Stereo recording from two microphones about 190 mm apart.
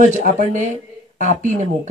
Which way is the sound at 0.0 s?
40° right (ahead or behind).